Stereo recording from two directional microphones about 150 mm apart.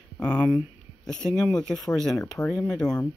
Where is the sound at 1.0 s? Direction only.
5° left (ahead or behind).